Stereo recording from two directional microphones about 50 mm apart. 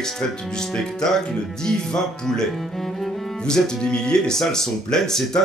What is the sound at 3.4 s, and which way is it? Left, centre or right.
Speech, centre.